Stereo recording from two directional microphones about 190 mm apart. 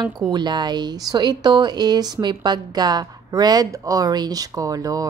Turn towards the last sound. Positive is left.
turn(degrees=-20)  # may be behind; listen again after turning